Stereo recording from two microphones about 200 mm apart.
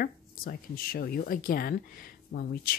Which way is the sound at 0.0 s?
50° left (ahead or behind).